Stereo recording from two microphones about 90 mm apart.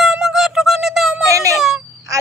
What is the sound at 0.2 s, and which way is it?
Music, centre (ahead or behind).